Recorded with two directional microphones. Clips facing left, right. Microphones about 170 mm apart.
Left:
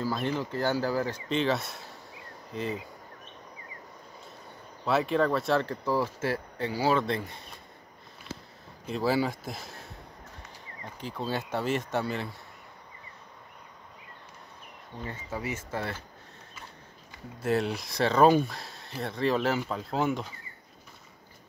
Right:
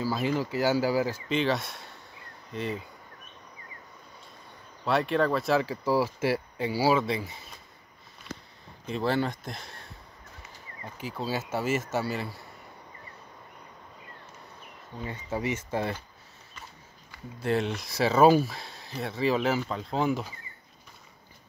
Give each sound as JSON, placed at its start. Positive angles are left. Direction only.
{"t": 0.0, "sound": "speech", "side_deg": -5}
{"t": 4.8, "sound": "speech", "side_deg": 0}
{"t": 8.8, "sound": "speech", "side_deg": 5}
{"t": 11.0, "sound": "speech", "side_deg": -5}
{"t": 15.3, "sound": "speech", "side_deg": -20}
{"t": 17.4, "sound": "speech", "side_deg": 0}